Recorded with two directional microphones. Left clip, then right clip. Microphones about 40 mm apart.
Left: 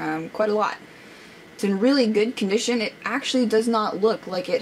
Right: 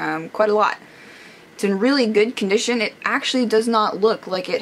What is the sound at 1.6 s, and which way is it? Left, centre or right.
Speech, right.